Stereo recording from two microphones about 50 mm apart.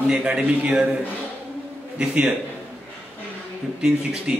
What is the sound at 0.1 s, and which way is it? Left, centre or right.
Speech, centre.